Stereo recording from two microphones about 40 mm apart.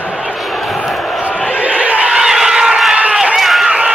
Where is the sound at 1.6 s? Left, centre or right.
Right.